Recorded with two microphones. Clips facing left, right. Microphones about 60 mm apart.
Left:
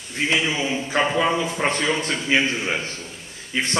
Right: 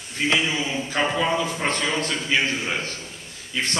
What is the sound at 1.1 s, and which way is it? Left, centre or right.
A man's voice, left.